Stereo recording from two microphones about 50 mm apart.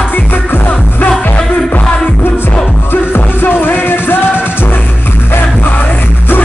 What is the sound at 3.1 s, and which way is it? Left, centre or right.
Music, left.